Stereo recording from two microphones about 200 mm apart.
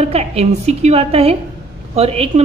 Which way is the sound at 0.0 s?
30° right (ahead or behind).